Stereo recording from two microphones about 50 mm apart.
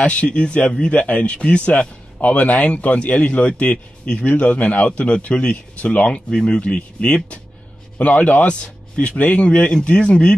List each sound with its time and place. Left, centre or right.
0.0 s speech: left